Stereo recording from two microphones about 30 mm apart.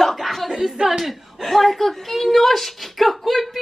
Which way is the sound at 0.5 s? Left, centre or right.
Centre.